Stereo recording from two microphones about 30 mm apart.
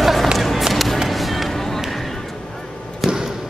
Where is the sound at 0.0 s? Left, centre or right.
Centre.